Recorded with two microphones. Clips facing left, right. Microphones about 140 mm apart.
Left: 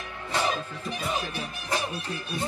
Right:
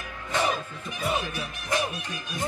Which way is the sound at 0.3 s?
35° left (ahead or behind).